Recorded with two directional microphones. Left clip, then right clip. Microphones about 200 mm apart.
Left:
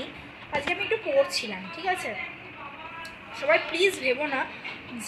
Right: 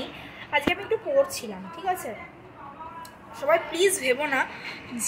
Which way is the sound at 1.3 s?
Centre (ahead or behind).